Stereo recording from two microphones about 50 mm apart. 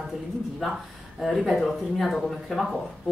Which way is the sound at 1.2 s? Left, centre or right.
Centre.